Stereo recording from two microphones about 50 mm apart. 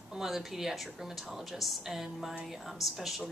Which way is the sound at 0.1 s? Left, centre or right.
Centre.